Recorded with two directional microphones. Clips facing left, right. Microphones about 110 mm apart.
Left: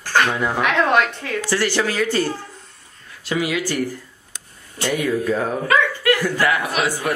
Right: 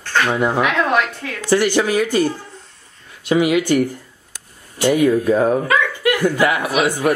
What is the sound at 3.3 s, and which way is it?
Speech, 20° right (ahead or behind).